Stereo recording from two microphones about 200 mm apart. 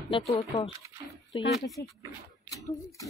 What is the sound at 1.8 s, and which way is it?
Speech, 60° left (ahead or behind).